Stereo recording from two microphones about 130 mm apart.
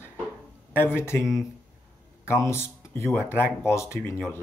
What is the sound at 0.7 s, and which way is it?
Speech, 15° left (ahead or behind).